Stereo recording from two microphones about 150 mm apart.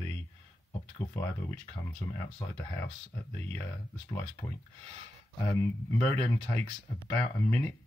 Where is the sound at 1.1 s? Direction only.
15° left (ahead or behind).